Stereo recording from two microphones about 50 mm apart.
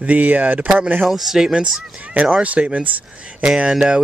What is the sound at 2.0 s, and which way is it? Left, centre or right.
Speech, right.